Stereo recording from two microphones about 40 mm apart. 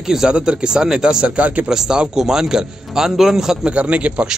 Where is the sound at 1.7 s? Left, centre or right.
Centre.